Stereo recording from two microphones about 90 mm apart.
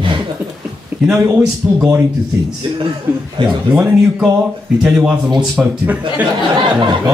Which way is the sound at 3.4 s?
70° right (ahead or behind).